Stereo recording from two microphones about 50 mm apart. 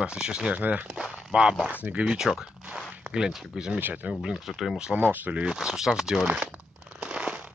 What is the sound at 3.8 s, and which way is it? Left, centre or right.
Speech, right.